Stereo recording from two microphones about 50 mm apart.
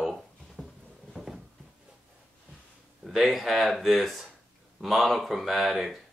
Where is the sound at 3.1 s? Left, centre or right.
Centre.